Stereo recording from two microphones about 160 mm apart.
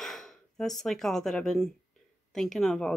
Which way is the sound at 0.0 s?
Centre (ahead or behind).